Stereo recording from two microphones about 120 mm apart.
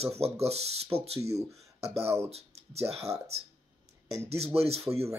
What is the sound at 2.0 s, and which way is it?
Speech, 20° right (ahead or behind).